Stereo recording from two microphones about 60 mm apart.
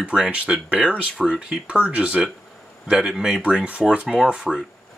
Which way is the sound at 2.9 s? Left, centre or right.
Centre.